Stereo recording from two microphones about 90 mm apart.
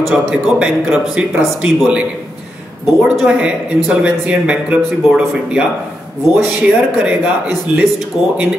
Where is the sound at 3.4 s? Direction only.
10° right (ahead or behind).